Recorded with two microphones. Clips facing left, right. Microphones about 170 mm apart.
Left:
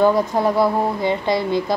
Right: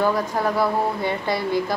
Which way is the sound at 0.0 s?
25° left (ahead or behind).